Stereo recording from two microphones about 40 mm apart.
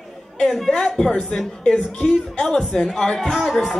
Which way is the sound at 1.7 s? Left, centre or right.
Centre.